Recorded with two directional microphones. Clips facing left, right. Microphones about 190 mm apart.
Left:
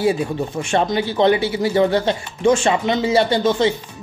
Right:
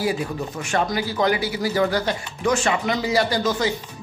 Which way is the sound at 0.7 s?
25° left (ahead or behind).